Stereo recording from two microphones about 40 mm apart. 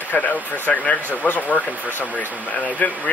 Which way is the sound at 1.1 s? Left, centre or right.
Left.